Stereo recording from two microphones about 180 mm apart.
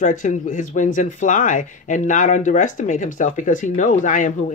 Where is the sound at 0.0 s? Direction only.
45° left (ahead or behind).